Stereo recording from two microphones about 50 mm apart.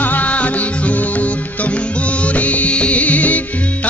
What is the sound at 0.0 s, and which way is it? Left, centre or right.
Music, left.